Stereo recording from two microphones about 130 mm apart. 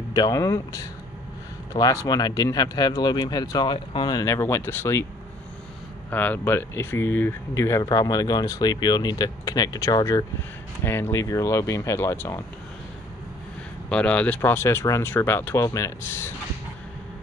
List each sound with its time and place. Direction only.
0.1 s speech: 30° left (ahead or behind)
4.2 s speech: 20° left (ahead or behind)
6.0 s speech: 15° left (ahead or behind)
10.8 s speech: 20° left (ahead or behind)
13.8 s speech: 10° left (ahead or behind)